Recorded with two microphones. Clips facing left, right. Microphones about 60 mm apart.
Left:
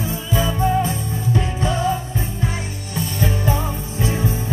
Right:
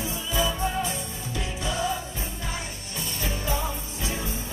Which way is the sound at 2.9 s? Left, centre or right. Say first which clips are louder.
Left 9 dB; left.